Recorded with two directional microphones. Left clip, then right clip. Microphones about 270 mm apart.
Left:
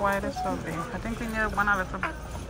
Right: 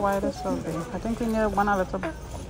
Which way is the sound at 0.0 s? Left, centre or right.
Centre.